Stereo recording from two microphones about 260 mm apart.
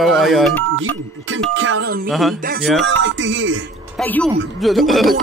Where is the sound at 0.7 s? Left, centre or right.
Right.